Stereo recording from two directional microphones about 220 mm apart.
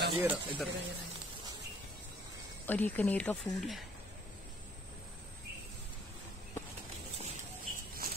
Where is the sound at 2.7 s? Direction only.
5° left (ahead or behind).